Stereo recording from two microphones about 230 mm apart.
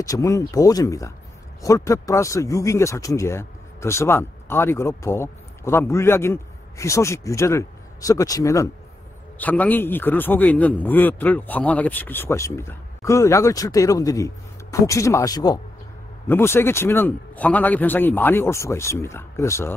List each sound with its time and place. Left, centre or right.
0.0 s speech: centre